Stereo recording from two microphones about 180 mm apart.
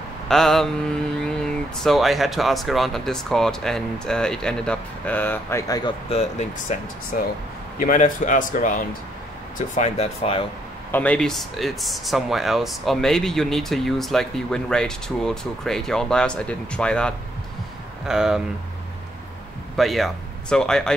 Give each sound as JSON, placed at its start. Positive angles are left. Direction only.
{"t": 0.3, "sound": "speech", "side_deg": 0}
{"t": 1.8, "sound": "speech", "side_deg": 0}
{"t": 6.0, "sound": "speech", "side_deg": 35}
{"t": 10.9, "sound": "speech", "side_deg": 10}
{"t": 19.8, "sound": "speech", "side_deg": 0}